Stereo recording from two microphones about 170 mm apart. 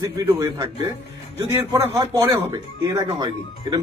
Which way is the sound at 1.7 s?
20° right (ahead or behind).